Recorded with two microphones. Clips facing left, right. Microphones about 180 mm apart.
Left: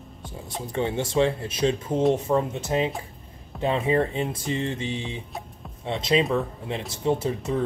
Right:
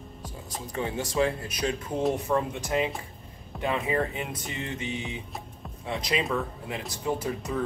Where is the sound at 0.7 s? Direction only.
25° left (ahead or behind).